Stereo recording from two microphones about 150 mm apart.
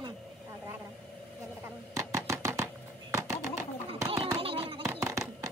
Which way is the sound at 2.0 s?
20° right (ahead or behind).